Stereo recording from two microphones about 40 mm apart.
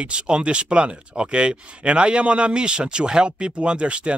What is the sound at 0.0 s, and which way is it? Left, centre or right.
Speech, right.